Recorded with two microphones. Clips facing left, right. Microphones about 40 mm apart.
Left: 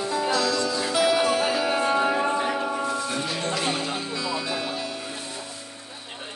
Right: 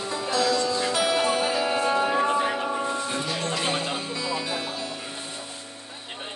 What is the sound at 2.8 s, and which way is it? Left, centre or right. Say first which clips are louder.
Music: left 1 dB; right.